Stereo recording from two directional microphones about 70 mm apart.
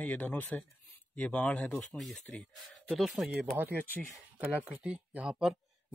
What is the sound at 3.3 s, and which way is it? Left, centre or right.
Speech, right.